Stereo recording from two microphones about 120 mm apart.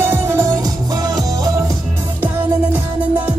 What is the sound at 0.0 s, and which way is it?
Music, 20° right (ahead or behind).